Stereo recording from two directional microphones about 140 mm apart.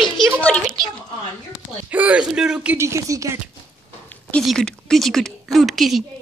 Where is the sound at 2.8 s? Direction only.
20° right (ahead or behind).